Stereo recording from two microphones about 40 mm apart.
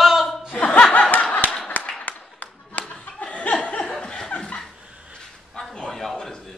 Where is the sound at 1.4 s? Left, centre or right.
Left.